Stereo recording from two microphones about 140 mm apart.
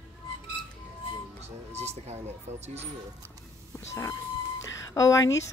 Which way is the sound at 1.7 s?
50° right (ahead or behind).